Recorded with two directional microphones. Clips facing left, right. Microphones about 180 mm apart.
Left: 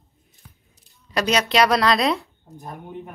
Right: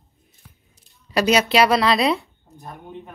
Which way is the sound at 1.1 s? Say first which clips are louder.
Right 3 dB; 5° right (ahead or behind).